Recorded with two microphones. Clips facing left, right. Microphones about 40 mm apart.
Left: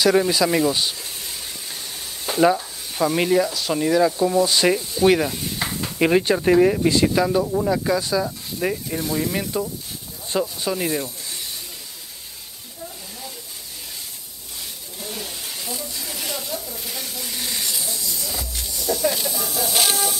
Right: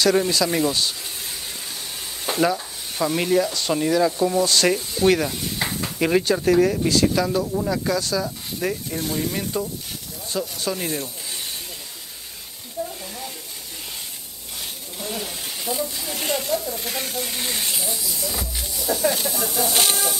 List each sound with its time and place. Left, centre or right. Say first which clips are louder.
0.0 s speech: left 2 dB; centre
2.4 s sizzle: left 5 dB; centre
3.2 s speech: left 1 dB; centre
3.4 s speech: even; centre
10.6 s speech: left 2 dB; centre
15.0 s snake: right 2 dB; centre
16.2 s snake: right 7 dB; right
17.4 s hiss: left 2 dB; right
17.8 s snake: right 1 dB; centre
19.3 s chicken: right 1 dB; centre